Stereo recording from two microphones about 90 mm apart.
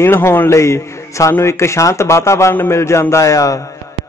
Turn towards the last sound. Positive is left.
turn(degrees=40)  # may be behind; listen again after turning